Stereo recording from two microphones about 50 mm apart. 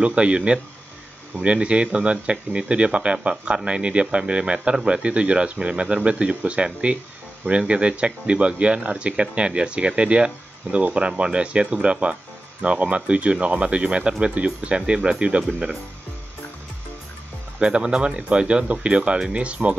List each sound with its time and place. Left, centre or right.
0.0 s speech: right
17.6 s speech: right